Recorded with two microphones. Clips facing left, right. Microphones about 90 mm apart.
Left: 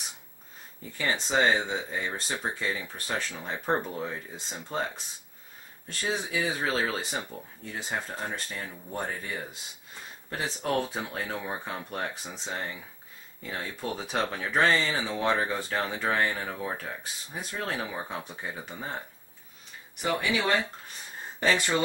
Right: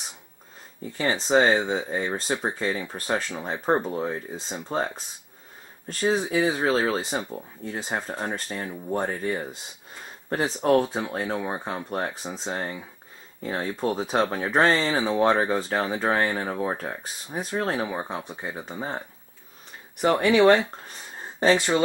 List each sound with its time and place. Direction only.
0.9 s speech: 35° right (ahead or behind)
20.0 s speech: 50° right (ahead or behind)
21.4 s speech: 30° right (ahead or behind)